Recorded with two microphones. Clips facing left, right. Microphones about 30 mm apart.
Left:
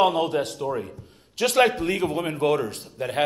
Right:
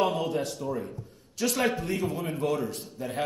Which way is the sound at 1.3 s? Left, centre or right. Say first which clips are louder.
Left 7 dB; left.